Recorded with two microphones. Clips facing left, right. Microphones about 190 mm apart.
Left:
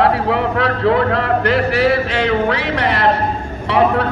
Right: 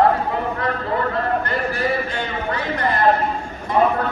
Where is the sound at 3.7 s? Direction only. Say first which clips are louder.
Left 3 dB; 80° left.